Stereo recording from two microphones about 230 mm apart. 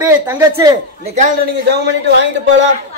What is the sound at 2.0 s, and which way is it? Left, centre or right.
Speech, right.